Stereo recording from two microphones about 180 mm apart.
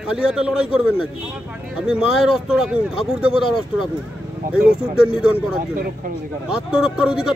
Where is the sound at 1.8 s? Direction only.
5° right (ahead or behind).